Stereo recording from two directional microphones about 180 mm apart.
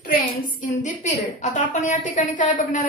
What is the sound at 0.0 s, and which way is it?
A woman's voice, 45° left (ahead or behind).